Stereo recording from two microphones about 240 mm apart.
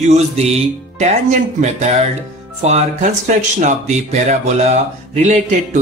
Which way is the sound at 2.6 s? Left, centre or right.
Right.